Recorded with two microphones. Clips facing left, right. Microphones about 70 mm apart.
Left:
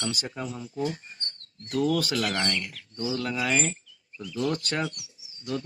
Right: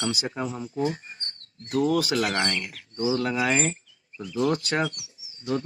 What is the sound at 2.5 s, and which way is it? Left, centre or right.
Speech, right.